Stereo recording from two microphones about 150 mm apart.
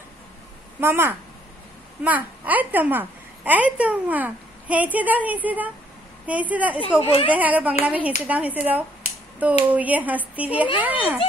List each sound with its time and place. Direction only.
0.7 s a child's voice: 15° right (ahead or behind)
7.0 s speech: 40° left (ahead or behind)
7.3 s a child's voice: 10° right (ahead or behind)